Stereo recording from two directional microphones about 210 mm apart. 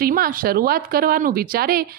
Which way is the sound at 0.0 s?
45° right (ahead or behind).